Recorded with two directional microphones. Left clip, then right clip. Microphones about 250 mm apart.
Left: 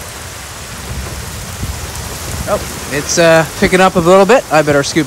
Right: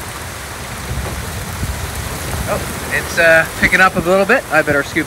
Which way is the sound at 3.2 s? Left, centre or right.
Left.